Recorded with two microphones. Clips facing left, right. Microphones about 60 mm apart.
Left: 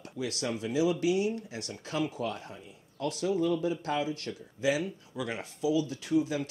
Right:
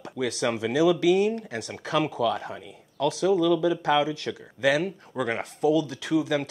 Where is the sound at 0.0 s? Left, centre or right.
Right.